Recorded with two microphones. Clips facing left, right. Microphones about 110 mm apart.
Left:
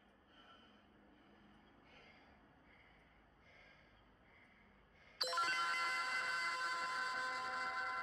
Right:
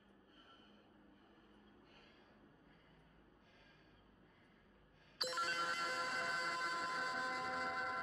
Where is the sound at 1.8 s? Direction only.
15° right (ahead or behind).